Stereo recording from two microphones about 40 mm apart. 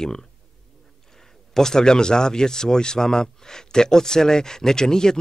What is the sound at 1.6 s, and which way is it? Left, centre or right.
Speech, centre.